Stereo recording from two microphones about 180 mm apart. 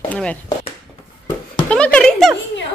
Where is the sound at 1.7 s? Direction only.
5° left (ahead or behind).